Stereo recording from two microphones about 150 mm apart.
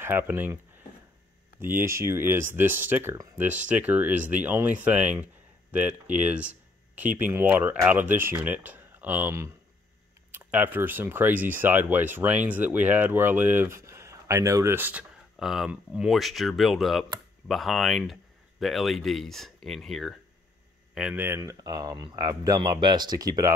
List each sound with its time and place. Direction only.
0.0 s speech: 15° right (ahead or behind)
1.6 s speech: 15° right (ahead or behind)
21.4 s speech: 25° right (ahead or behind)